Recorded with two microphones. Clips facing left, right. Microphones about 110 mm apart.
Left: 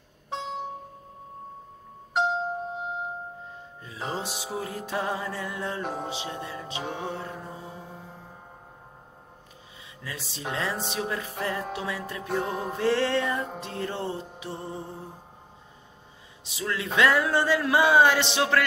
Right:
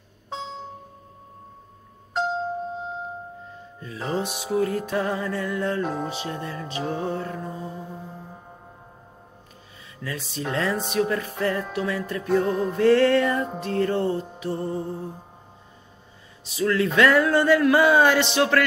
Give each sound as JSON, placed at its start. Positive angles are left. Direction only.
{"t": 3.8, "sound": "speech", "side_deg": 20}
{"t": 10.0, "sound": "speech", "side_deg": 25}
{"t": 16.4, "sound": "speech", "side_deg": 20}